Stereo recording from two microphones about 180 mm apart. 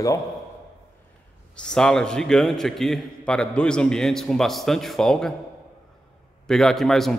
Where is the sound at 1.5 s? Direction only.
5° left (ahead or behind).